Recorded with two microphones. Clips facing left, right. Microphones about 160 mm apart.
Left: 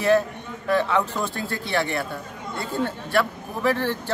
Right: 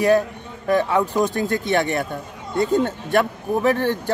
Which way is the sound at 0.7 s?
15° right (ahead or behind).